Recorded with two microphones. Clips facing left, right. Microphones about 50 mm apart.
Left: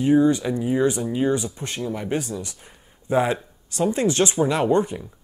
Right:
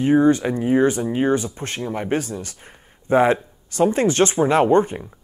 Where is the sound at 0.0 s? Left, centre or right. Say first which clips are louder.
Right 2 dB; right.